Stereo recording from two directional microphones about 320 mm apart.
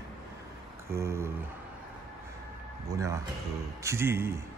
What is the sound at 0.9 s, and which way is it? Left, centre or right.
Speech, centre.